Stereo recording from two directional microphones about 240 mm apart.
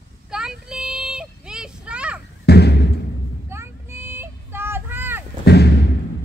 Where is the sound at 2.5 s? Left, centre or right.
Left.